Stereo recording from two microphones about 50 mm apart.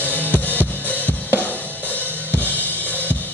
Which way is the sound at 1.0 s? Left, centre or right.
Left.